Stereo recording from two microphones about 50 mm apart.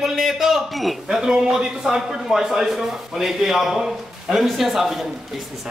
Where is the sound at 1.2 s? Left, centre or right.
Centre.